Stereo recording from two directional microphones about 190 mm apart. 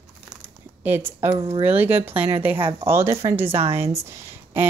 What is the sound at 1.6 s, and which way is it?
Speech, 10° right (ahead or behind).